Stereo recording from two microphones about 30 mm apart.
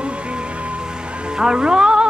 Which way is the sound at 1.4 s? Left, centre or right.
Right.